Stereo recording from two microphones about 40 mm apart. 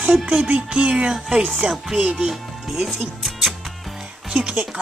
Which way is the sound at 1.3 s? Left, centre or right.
Centre.